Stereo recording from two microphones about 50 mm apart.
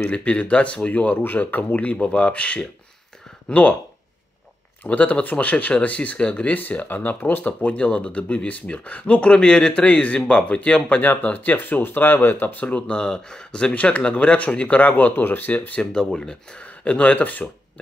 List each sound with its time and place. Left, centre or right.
0.1 s speech: left
1.1 s speech: left
4.8 s speech: left
6.6 s speech: left
7.7 s speech: left
11.0 s speech: left
15.9 s speech: centre
16.6 s speech: left